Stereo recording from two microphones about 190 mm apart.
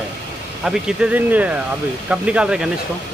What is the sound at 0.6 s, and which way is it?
Speech, 5° right (ahead or behind).